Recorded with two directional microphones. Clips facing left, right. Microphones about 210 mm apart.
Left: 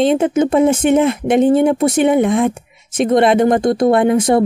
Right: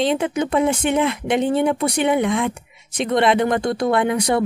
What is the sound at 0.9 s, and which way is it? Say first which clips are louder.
Speech: left 6 dB; 50° left (ahead or behind).